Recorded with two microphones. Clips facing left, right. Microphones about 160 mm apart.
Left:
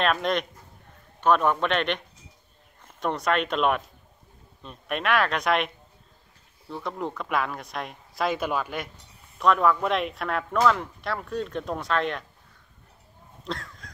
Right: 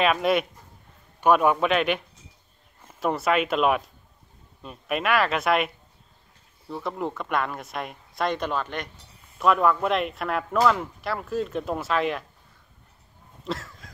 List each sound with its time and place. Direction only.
0.0 s a man's voice: 5° right (ahead or behind)
6.7 s speech: centre (ahead or behind)
13.4 s a sound: 5° right (ahead or behind)